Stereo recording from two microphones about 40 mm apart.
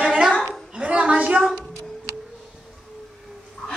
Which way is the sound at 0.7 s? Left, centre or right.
Right.